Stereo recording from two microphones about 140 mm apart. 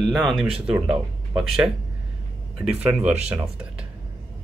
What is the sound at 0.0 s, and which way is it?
Speech, centre (ahead or behind).